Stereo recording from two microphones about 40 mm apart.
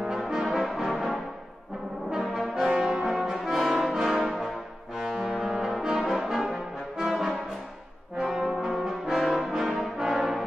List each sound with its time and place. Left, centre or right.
0.0 s brass instrument: centre
2.0 s brass instrument: centre